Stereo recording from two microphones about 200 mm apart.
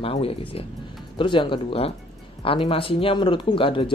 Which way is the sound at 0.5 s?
30° left (ahead or behind).